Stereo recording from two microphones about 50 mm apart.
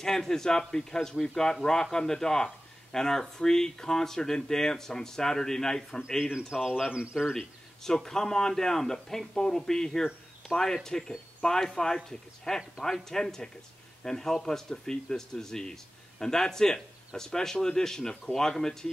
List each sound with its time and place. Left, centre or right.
0.0 s speech: centre
6.3 s speech: centre
7.3 s speech: centre